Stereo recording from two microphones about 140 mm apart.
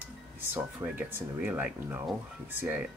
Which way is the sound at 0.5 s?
10° right (ahead or behind).